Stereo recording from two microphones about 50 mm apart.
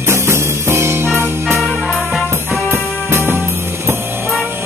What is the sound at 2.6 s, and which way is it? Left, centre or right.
Music, right.